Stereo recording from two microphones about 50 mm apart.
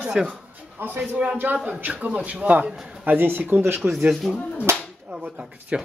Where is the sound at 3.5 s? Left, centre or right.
Right.